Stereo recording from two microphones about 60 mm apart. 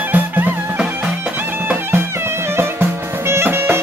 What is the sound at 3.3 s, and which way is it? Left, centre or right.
Music, right.